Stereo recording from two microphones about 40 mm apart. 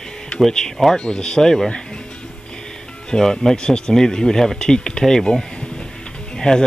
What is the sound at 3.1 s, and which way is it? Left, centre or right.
Speech, centre.